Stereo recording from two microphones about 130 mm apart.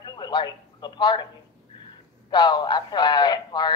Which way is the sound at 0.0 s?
35° left (ahead or behind).